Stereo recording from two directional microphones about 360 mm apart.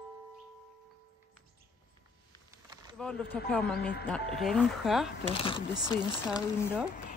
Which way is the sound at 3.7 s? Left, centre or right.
Left.